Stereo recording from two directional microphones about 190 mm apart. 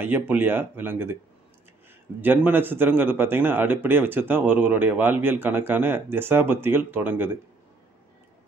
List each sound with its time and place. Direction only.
0.3 s a man's voice: 10° right (ahead or behind)
2.2 s a man's voice: 10° right (ahead or behind)